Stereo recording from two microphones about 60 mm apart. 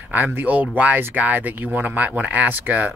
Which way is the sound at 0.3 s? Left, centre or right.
Right.